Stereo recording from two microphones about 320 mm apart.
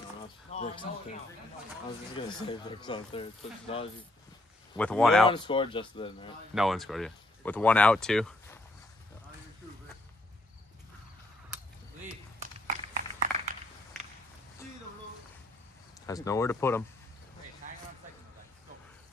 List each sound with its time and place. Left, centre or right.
0.5 s speech: centre
2.1 s speech: centre
4.7 s speech: centre
5.3 s speech: centre
6.5 s speech: centre
12.4 s a sound: right
16.1 s speech: centre